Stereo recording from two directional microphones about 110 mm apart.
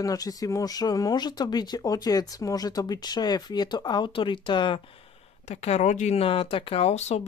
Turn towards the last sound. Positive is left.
turn(degrees=75)  # may be behind; listen again after turning